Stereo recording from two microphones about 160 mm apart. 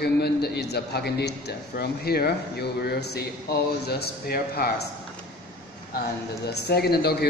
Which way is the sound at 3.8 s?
75° left (ahead or behind).